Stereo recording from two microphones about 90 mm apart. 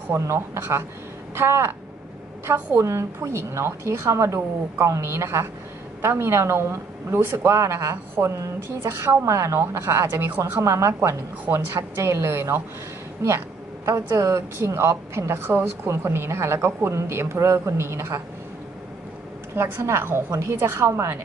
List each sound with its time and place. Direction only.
0.1 s a woman's voice: 30° right (ahead or behind)
19.5 s speech: 30° right (ahead or behind)